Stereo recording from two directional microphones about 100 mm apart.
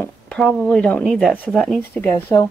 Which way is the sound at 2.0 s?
20° left (ahead or behind).